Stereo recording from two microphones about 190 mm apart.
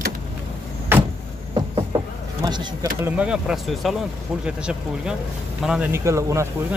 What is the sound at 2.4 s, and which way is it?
Bee, 20° right (ahead or behind).